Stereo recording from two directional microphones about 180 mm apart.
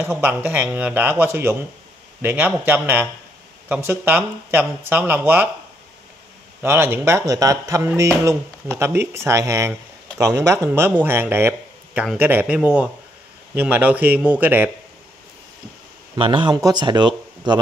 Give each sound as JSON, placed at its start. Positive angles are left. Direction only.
{"t": 0.0, "sound": "speech", "side_deg": -10}
{"t": 6.6, "sound": "speech", "side_deg": -15}
{"t": 16.2, "sound": "speech", "side_deg": -25}